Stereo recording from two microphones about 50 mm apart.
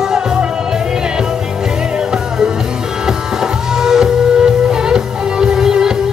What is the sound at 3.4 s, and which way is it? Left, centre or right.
Music, centre.